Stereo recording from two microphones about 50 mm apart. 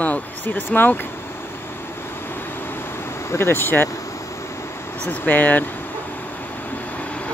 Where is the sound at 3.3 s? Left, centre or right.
Left.